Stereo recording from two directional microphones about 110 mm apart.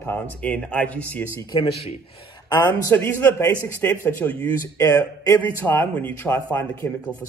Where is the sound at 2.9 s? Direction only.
20° left (ahead or behind).